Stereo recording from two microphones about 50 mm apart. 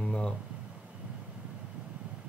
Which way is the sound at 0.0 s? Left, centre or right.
Centre.